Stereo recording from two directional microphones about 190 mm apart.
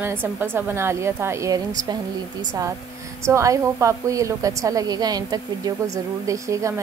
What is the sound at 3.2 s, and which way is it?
A woman's voice, 15° right (ahead or behind).